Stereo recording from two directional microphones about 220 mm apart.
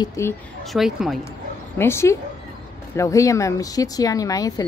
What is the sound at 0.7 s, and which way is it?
Speech, centre (ahead or behind).